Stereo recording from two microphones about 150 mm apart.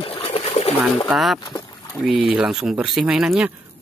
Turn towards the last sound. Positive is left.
turn(degrees=-5)  # may be behind; listen again after turning